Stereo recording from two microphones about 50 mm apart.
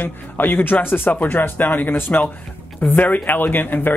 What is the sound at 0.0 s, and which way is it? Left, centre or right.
Speech, left.